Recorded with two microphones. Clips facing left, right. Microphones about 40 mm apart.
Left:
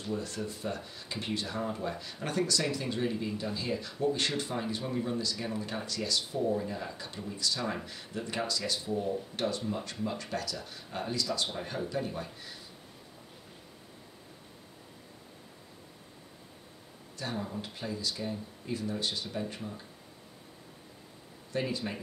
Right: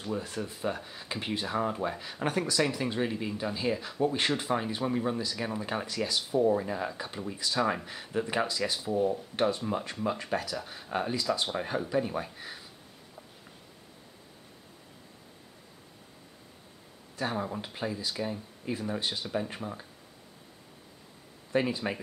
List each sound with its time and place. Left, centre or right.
0.1 s speech: right
6.6 s speech: right
17.2 s speech: right
21.5 s speech: right